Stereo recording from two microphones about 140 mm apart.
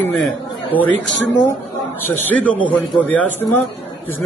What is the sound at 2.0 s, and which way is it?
A man's voice, 10° left (ahead or behind).